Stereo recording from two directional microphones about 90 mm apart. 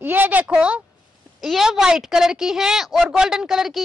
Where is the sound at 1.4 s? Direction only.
5° right (ahead or behind).